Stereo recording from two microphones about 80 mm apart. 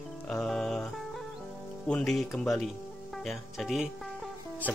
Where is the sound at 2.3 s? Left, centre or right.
Centre.